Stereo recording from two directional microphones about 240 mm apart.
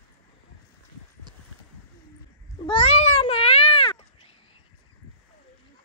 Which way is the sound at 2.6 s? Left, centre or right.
Left.